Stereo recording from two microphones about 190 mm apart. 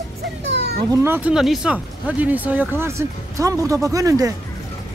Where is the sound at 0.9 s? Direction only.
10° right (ahead or behind).